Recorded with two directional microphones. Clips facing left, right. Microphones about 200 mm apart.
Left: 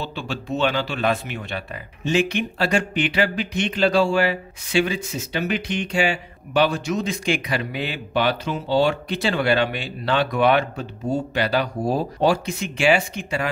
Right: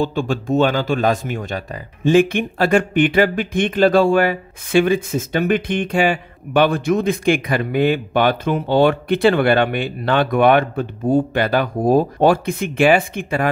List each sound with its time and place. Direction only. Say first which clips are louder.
0.0 s speech: right 10 dB; 50° right (ahead or behind)